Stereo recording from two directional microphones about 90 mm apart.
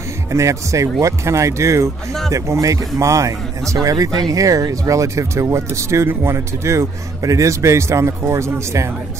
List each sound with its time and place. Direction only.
0.3 s speech: 35° right (ahead or behind)